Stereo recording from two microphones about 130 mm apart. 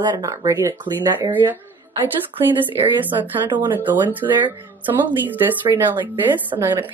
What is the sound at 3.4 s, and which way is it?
Speech, 35° right (ahead or behind).